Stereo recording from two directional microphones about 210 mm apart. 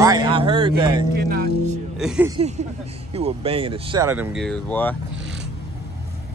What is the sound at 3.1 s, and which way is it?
Speech, 30° right (ahead or behind).